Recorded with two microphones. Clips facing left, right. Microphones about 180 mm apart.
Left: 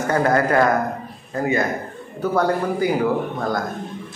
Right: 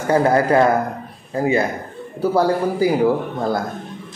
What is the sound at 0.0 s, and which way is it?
Speech, 30° right (ahead or behind).